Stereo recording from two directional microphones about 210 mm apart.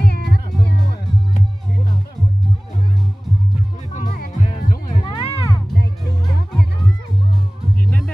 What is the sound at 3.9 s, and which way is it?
Music, 40° left (ahead or behind).